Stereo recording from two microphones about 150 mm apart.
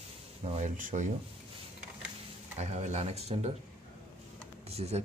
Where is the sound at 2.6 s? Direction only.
50° right (ahead or behind).